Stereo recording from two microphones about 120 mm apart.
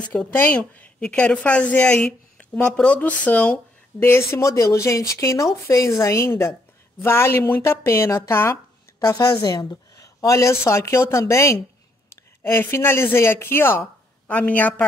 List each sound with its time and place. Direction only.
0.0 s a woman's voice: 10° left (ahead or behind)
9.0 s a woman's voice: 35° left (ahead or behind); by 14.9 s 10° left (ahead or behind)